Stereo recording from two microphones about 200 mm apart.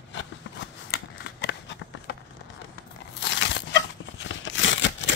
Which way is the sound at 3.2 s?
65° left (ahead or behind).